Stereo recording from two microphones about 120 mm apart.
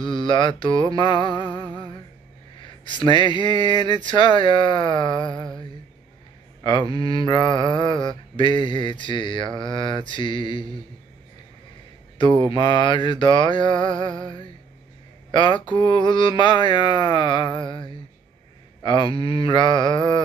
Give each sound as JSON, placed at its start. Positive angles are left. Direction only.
{"t": 0.0, "sound": "mantra", "side_deg": 45}
{"t": 1.3, "sound": "a sound", "side_deg": -40}
{"t": 2.6, "sound": "mantra", "side_deg": 40}
{"t": 6.9, "sound": "mantra", "side_deg": 50}
{"t": 7.2, "sound": "mantra", "side_deg": 40}
{"t": 12.4, "sound": "mantra", "side_deg": 40}
{"t": 15.3, "sound": "mantra", "side_deg": 40}
{"t": 18.8, "sound": "speech", "side_deg": 40}
{"t": 19.1, "sound": "mantra", "side_deg": 50}